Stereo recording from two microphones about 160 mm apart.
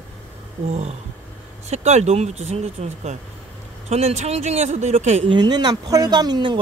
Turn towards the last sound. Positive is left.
turn(degrees=-25)  # may be behind; listen again after turning